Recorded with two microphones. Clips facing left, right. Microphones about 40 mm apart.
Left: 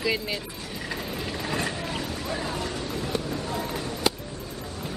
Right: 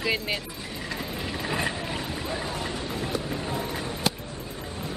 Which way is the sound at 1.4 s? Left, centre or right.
Centre.